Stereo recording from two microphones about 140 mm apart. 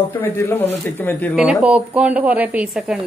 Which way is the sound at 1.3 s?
5° right (ahead or behind).